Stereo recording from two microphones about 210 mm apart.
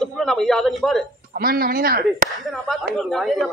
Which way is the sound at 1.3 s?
45° right (ahead or behind).